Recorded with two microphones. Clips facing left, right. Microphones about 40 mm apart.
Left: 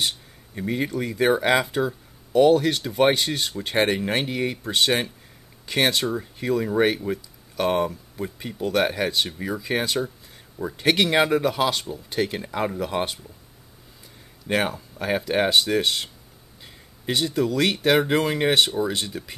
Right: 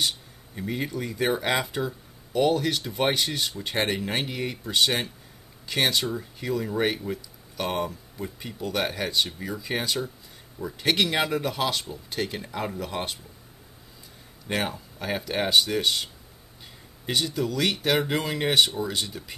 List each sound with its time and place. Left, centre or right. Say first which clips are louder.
0.6 s speech: left 4 dB; centre
6.1 s speech: left 5 dB; left
6.8 s speech: left 5 dB; centre
14.5 s speech: left 5 dB; left
15.0 s speech: left 6 dB; centre
16.6 s a sound: left 4 dB; centre
17.6 s speech: left 4 dB; centre